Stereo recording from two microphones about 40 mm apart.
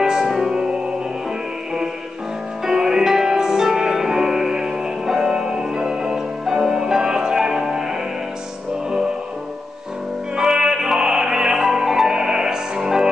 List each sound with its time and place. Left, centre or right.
0.0 s music: centre
0.3 s music: centre
2.6 s music: centre
10.3 s music: centre